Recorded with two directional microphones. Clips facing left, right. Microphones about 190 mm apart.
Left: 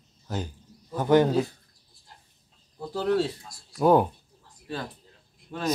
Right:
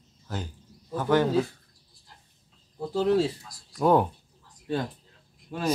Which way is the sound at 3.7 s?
5° left (ahead or behind).